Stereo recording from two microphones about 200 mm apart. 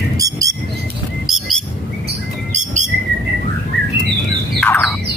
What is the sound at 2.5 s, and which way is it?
Bird, 35° right (ahead or behind).